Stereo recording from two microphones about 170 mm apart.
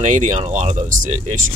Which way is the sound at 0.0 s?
45° right (ahead or behind).